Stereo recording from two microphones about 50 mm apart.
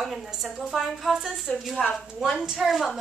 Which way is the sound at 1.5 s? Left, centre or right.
Left.